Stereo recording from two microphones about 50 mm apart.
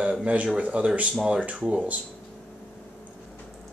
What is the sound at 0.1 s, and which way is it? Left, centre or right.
Speech, right.